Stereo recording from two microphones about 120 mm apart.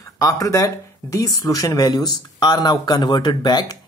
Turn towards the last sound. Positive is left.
turn(degrees=35)  # may be behind; listen again after turning